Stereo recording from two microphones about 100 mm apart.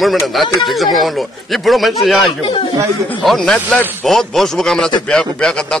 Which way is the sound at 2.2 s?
65° left (ahead or behind).